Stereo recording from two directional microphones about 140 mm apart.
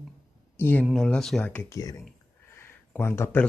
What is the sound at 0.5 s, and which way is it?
Speech, 15° left (ahead or behind).